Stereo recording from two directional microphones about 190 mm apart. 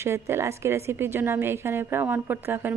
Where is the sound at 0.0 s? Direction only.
15° right (ahead or behind).